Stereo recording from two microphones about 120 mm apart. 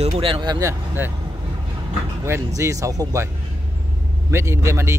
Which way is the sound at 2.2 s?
25° right (ahead or behind).